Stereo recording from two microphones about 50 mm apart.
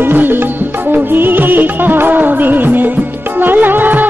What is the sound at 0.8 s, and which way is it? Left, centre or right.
Music of bollywood, right.